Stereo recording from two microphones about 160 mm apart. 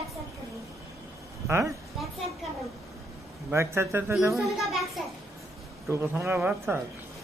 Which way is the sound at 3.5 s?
15° right (ahead or behind).